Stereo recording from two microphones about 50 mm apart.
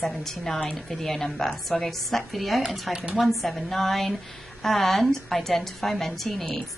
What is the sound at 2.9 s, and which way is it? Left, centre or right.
Speech, centre.